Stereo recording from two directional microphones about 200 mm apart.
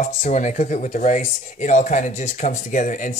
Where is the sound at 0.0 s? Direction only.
35° left (ahead or behind).